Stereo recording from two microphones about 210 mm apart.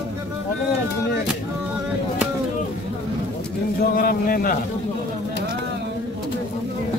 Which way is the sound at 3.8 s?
45° left (ahead or behind).